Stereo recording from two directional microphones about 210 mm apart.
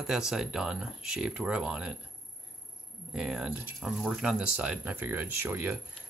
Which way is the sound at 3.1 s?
5° right (ahead or behind).